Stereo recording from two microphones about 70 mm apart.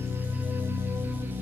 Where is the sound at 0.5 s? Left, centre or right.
Right.